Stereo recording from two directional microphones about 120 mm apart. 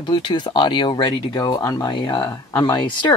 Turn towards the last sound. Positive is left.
turn(degrees=40)  # may be behind; listen again after turning